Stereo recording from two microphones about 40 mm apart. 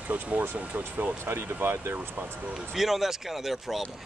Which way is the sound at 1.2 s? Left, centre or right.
Right.